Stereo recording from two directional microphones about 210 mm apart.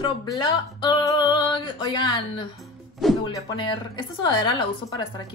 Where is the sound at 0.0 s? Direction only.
20° left (ahead or behind).